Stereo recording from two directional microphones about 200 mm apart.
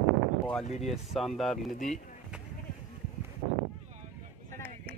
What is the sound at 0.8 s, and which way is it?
Speech, centre (ahead or behind).